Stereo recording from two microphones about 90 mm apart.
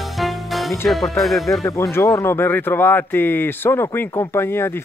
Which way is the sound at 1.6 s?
35° left (ahead or behind).